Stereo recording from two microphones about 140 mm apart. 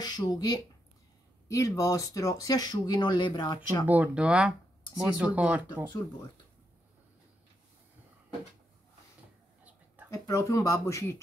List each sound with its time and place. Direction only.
0.0 s speech: 30° left (ahead or behind)
3.8 s speech: 10° right (ahead or behind)
10.1 s speech: 20° left (ahead or behind)